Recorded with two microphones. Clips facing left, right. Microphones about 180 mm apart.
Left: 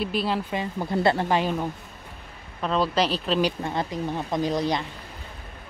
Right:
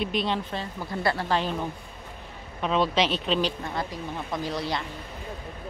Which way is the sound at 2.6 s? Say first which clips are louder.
Left 1 dB; centre (ahead or behind).